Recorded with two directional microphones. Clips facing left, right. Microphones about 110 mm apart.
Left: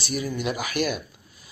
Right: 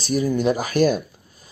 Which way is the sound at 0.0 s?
40° right (ahead or behind).